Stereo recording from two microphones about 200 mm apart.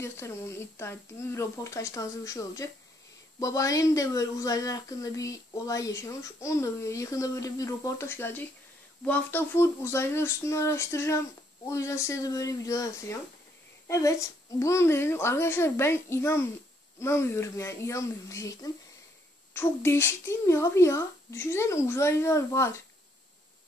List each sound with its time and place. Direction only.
0.0 s a woman's voice: 15° left (ahead or behind)